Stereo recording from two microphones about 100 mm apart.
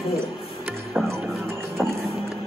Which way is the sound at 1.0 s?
15° right (ahead or behind).